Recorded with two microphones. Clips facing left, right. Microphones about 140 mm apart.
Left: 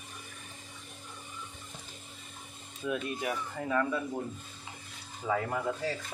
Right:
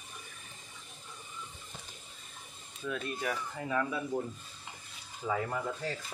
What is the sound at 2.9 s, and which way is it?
Speech, 15° left (ahead or behind).